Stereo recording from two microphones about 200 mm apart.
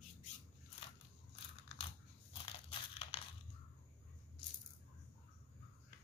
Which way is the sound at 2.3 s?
25° left (ahead or behind).